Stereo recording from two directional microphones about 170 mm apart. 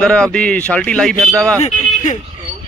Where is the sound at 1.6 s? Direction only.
45° left (ahead or behind).